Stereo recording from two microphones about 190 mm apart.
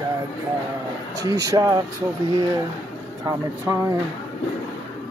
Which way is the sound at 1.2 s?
20° right (ahead or behind).